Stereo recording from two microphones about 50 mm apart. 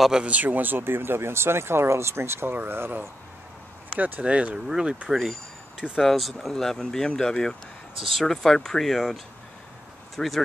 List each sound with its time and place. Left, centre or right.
0.2 s speech: right
2.5 s speech: right
4.2 s speech: right
4.6 s speech: centre
5.1 s speech: centre